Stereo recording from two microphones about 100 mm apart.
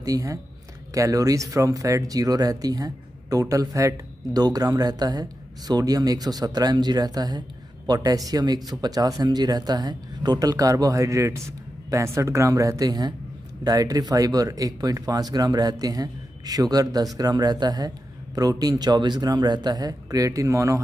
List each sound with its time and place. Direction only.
0.0 s speech: 35° right (ahead or behind)